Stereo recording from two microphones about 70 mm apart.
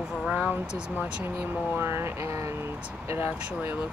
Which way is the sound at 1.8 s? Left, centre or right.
Right.